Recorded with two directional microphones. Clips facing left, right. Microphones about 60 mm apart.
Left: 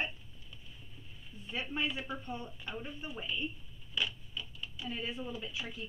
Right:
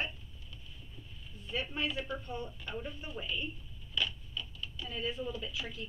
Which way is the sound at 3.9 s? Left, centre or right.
Centre.